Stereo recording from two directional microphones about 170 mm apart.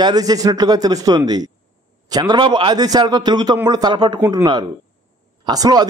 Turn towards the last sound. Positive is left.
turn(degrees=-25)  # may be behind; listen again after turning